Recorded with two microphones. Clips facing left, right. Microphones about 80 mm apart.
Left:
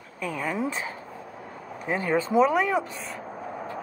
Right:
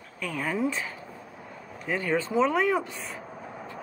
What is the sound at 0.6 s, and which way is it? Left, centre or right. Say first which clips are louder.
Speech: even; left.